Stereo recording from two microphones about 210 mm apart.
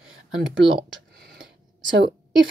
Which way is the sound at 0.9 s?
55° right (ahead or behind).